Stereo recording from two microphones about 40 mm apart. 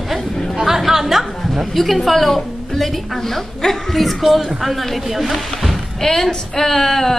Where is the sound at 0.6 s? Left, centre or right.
Centre.